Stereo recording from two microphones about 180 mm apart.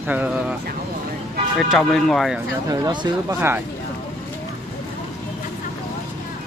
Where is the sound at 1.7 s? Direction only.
Centre (ahead or behind).